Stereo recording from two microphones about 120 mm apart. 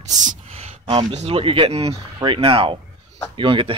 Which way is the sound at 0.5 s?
55° right (ahead or behind).